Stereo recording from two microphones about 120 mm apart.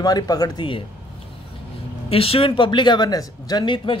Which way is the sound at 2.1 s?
50° left (ahead or behind).